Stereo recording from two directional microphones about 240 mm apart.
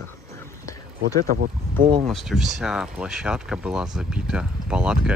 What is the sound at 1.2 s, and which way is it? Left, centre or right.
Speech, right.